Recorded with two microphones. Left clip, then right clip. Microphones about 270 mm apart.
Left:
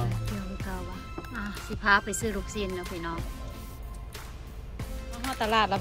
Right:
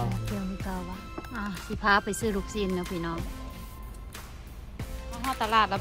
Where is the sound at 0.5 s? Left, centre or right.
Centre.